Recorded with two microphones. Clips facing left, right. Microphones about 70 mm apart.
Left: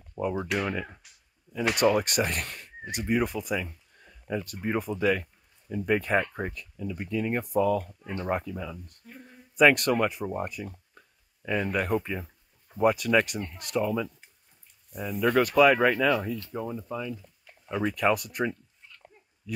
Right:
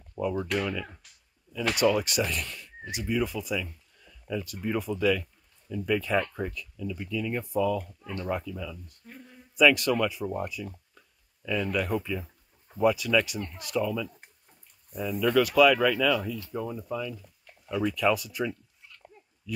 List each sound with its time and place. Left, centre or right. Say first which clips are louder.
0.2 s speech: even; centre
0.6 s speech: left 1 dB; left
1.8 s speech: left 1 dB; left
3.9 s a sound: left 1 dB; left
4.6 s speech: even; left
8.0 s speech: left 1 dB; left
8.3 s speech: left 2 dB; left
16.5 s speech: right 2 dB; centre
17.6 s speech: even; left